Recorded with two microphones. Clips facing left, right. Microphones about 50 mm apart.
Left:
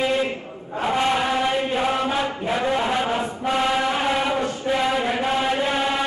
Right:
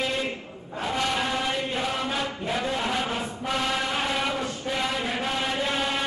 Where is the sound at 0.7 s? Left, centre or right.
Left.